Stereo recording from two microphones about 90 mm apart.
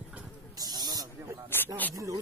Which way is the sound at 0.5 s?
45° right (ahead or behind).